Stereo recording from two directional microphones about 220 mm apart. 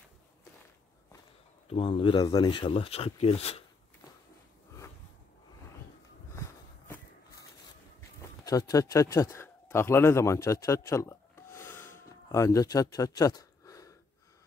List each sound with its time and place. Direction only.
1.7 s speech: 25° left (ahead or behind)
8.2 s speech: 15° left (ahead or behind)